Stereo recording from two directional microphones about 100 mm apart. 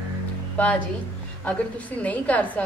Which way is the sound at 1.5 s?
15° left (ahead or behind).